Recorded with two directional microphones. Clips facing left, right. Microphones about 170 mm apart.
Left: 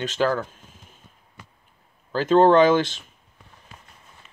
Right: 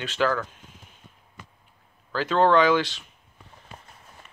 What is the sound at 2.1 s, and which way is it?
Speech, 45° left (ahead or behind).